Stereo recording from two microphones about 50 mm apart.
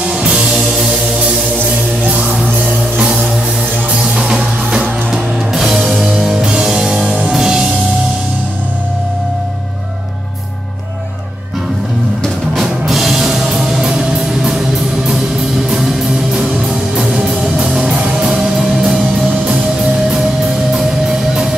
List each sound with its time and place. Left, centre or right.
0.0 s music: centre
2.0 s music: right
4.0 s music: centre
12.5 s music: centre